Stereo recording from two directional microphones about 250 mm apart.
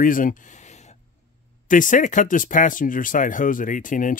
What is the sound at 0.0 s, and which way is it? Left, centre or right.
Speech, left.